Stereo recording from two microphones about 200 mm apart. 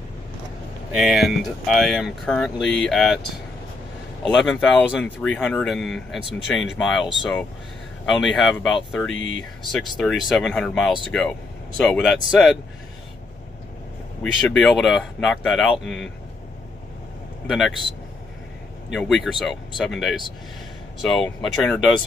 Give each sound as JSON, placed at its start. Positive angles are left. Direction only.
{"t": 0.9, "sound": "speech", "side_deg": 0}
{"t": 4.3, "sound": "speech", "side_deg": 0}
{"t": 9.1, "sound": "speech", "side_deg": 70}
{"t": 9.7, "sound": "speech", "side_deg": 0}
{"t": 14.2, "sound": "speech", "side_deg": 5}
{"t": 17.5, "sound": "speech", "side_deg": 0}
{"t": 18.9, "sound": "speech", "side_deg": 0}